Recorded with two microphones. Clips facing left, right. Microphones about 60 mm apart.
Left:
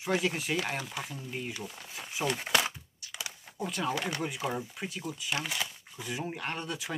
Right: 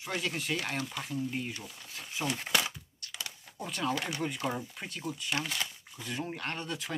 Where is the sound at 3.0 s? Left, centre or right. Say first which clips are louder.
Left 1 dB; centre.